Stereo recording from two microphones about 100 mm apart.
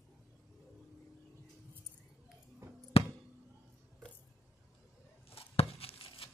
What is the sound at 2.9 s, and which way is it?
Basketball bounce, 75° left (ahead or behind).